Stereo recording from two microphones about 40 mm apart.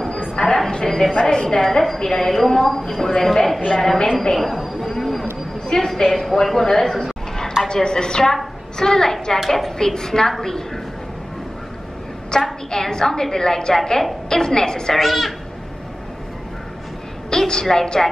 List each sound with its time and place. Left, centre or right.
0.4 s a woman's voice: left
0.8 s a woman's voice: centre
4.4 s a sound: centre
6.1 s a woman's voice: centre
12.3 s a woman's voice: centre
15.0 s speech: centre
17.3 s a woman's voice: centre